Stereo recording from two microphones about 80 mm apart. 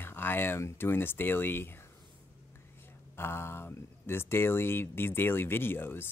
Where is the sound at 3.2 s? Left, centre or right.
Left.